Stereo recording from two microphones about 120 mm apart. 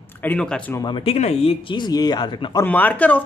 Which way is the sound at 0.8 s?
40° left (ahead or behind).